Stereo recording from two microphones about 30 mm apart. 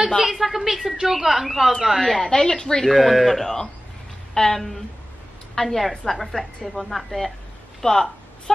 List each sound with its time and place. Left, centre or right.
0.2 s a woman's voice: centre
2.3 s speech: left
2.8 s a woman's voice: centre
7.8 s a sound: centre